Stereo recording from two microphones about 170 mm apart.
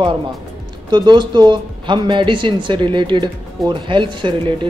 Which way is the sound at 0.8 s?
25° right (ahead or behind).